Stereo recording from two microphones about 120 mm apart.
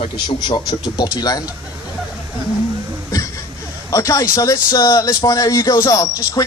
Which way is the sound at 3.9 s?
25° left (ahead or behind).